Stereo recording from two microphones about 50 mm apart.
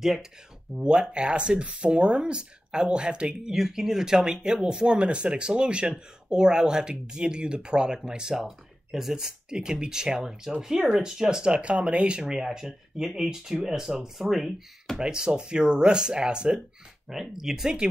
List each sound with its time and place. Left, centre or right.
0.0 s speech: centre
0.7 s speech: centre
3.5 s speech: centre
15.0 s speech: centre